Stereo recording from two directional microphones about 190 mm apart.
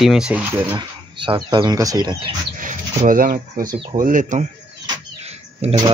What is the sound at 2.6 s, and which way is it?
Speech, 45° right (ahead or behind).